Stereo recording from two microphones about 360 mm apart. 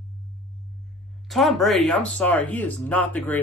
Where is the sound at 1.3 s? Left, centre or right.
Centre.